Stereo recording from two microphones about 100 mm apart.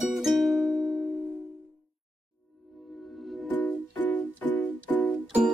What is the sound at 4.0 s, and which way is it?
Music, 15° left (ahead or behind).